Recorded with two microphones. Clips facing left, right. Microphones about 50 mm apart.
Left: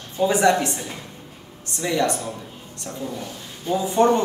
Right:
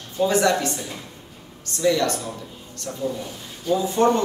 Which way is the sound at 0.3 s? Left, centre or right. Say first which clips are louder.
Left 2 dB; left.